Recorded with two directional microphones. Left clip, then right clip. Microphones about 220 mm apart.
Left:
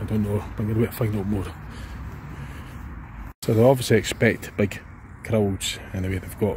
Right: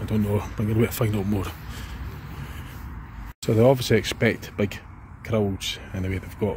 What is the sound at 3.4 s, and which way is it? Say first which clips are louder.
Speech: left 1 dB; centre (ahead or behind).